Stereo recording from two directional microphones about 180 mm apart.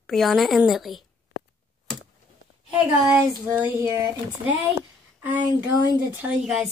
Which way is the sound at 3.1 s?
15° right (ahead or behind).